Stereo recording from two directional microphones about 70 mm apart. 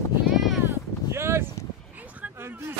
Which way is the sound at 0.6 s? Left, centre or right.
Right.